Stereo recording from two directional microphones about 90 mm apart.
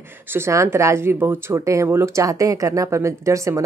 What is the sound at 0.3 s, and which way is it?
Speech, 30° right (ahead or behind).